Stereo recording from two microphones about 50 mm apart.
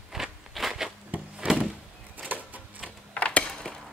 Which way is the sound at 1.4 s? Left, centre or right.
Right.